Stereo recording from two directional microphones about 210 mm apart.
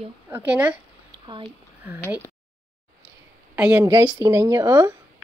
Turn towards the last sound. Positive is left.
turn(degrees=-15)  # may be behind; listen again after turning